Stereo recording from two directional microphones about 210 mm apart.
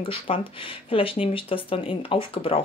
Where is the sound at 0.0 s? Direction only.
25° left (ahead or behind).